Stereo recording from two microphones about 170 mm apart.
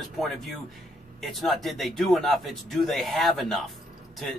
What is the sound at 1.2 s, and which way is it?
A man's voice, centre (ahead or behind).